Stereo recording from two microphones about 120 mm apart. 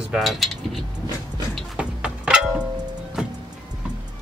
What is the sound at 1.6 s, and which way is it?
Music, 10° right (ahead or behind).